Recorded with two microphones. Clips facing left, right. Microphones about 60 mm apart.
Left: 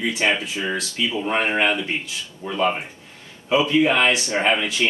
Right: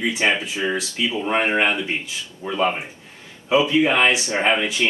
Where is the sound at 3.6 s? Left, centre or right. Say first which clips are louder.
Left 1 dB; right.